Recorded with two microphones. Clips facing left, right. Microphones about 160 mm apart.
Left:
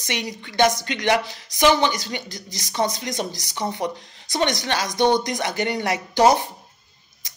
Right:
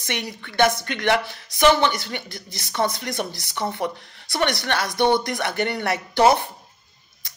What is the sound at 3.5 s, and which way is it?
Speech, 15° left (ahead or behind).